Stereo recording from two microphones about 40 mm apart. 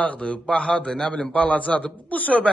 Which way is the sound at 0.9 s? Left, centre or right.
Centre.